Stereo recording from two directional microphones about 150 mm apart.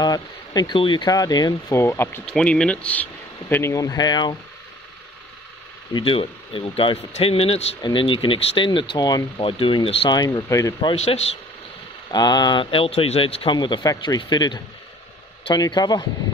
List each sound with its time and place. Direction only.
0.0 s speech: 25° left (ahead or behind)
2.2 s speech: 5° left (ahead or behind); by 4.4 s 30° left (ahead or behind)
5.9 s speech: 35° left (ahead or behind)
11.0 s speech: 45° left (ahead or behind)
12.1 s speech: 25° left (ahead or behind)